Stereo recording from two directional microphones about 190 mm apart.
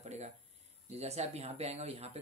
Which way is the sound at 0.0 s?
35° right (ahead or behind).